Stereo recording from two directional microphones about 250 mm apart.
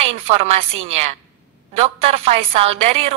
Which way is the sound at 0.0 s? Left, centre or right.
Right.